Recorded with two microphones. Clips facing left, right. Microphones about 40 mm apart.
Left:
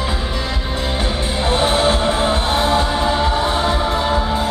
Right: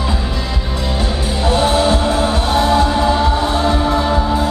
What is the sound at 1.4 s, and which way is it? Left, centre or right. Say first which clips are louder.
Music: right 2 dB; left.